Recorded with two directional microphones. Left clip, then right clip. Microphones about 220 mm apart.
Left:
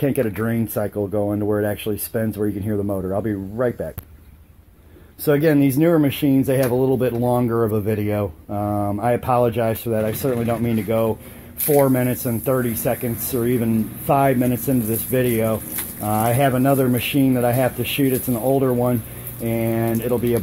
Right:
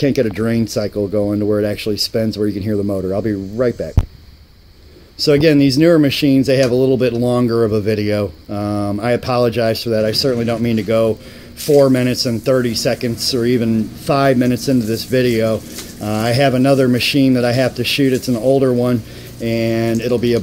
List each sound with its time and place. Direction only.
0.0 s speech: 5° right (ahead or behind)
5.2 s speech: centre (ahead or behind)